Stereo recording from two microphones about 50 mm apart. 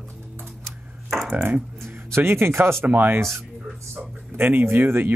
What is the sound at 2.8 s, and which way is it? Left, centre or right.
Speech, right.